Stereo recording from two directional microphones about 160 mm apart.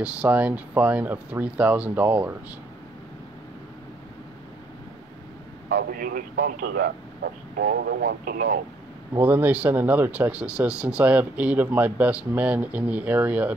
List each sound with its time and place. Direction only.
0.0 s speech: 10° right (ahead or behind)
5.7 s speech: 70° right (ahead or behind)
7.5 s speech: 85° right
9.1 s speech: 10° right (ahead or behind)